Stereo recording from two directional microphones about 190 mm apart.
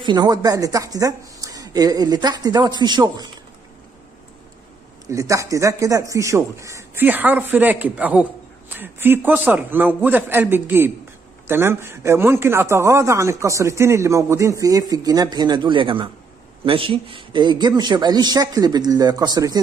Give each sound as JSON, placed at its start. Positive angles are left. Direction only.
{"t": 0.0, "sound": "speech", "side_deg": -20}
{"t": 5.1, "sound": "a man's voice", "side_deg": -15}